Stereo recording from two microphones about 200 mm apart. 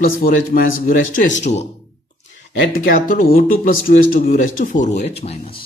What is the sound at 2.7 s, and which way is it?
Speech, 45° left (ahead or behind).